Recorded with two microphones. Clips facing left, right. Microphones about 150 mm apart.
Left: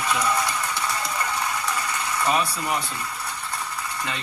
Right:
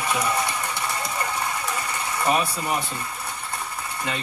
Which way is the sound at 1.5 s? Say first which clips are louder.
Left 1 dB; 25° right (ahead or behind).